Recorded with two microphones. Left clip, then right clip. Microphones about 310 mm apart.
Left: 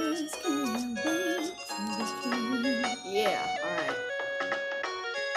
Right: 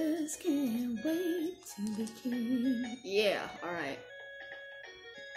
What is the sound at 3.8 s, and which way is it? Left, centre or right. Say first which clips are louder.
Music: left 9 dB; left.